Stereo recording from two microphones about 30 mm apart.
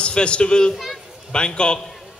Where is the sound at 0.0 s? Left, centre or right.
Left.